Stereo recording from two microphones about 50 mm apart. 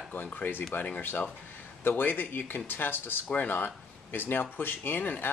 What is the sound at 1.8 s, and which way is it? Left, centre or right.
Speech, left.